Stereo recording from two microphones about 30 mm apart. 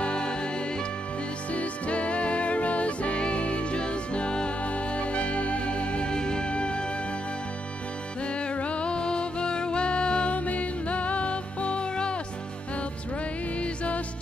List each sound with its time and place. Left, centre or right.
0.0 s music: left
1.5 s music: left
4.9 s music: left
8.5 s music: left
8.9 s music: left
10.3 s music: left
13.6 s music: left